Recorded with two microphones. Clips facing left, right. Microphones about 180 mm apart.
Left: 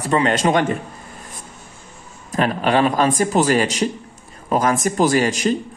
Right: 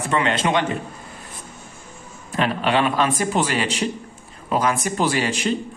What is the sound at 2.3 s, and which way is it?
A man's voice, 40° left (ahead or behind).